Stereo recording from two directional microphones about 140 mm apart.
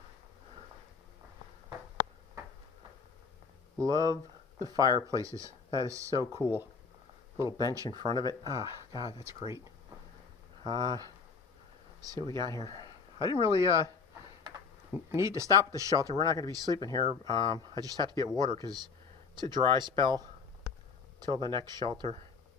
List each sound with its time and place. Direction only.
3.8 s speech: 25° right (ahead or behind)
10.6 s speech: 30° right (ahead or behind)
15.0 s speech: 20° right (ahead or behind); by 22.2 s 35° right (ahead or behind)